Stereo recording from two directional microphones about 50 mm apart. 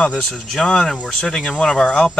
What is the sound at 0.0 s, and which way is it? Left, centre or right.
Speech, centre.